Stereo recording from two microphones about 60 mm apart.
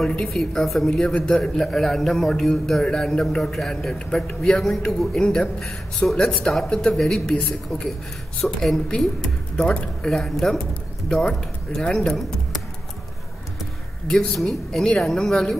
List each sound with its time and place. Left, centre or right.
0.3 s a man's voice: centre
0.8 s a man's voice: centre
7.0 s a man's voice: centre
7.2 s a man's voice: centre
11.7 s a man's voice: centre
12.1 s a sound: centre
14.2 s a man's voice: centre